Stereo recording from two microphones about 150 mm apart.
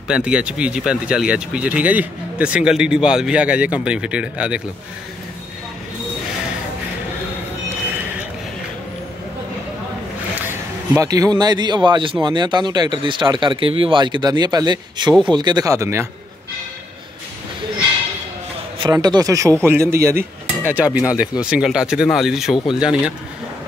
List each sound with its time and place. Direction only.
0.1 s speech: 5° right (ahead or behind)
7.9 s a sound: 10° right (ahead or behind)
11.0 s a man's voice: 25° right (ahead or behind)
18.8 s a man's voice: 25° right (ahead or behind); by 23.1 s 5° right (ahead or behind)